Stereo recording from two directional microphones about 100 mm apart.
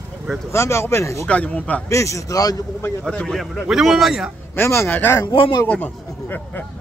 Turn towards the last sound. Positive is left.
turn(degrees=15)  # may be behind; listen again after turning